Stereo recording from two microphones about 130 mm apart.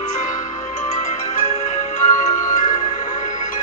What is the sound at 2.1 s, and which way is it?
Music, 20° left (ahead or behind).